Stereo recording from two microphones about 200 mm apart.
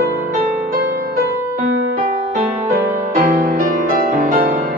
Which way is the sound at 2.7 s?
45° right (ahead or behind).